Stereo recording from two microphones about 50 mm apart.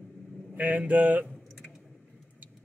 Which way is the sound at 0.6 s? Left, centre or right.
Right.